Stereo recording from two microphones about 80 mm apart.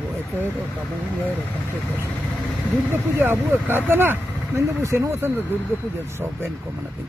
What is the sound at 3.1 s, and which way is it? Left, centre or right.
Speech, right.